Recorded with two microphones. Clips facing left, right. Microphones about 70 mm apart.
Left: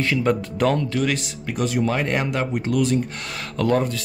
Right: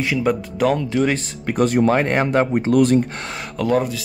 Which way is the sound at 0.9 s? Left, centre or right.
Right.